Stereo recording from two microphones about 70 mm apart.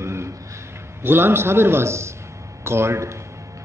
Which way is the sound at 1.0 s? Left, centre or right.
Right.